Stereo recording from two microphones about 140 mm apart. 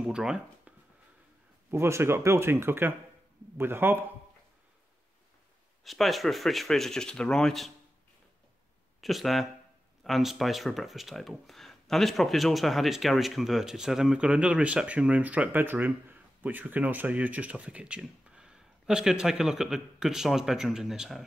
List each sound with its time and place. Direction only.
0.0 s speech: 5° right (ahead or behind)
1.7 s speech: 20° right (ahead or behind)
5.9 s speech: centre (ahead or behind)
9.0 s speech: centre (ahead or behind)